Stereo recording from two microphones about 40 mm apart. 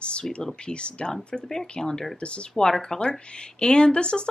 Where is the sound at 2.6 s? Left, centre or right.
Centre.